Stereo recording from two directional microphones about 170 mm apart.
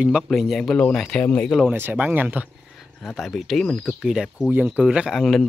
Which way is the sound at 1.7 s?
10° right (ahead or behind).